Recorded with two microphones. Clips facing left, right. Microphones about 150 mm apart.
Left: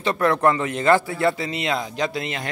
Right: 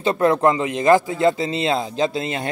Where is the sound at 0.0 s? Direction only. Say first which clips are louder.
Right 2 dB; 25° right (ahead or behind).